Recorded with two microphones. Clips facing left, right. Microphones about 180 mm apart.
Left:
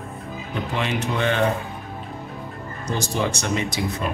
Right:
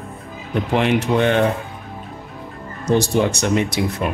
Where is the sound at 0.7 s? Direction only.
60° right (ahead or behind).